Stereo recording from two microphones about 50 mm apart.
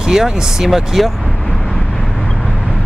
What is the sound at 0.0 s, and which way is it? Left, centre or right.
Speech, centre.